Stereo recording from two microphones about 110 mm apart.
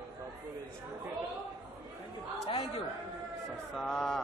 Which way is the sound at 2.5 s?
65° left (ahead or behind).